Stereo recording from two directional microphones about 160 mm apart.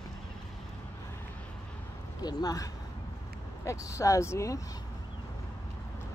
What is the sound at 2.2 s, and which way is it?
Speech, 25° left (ahead or behind).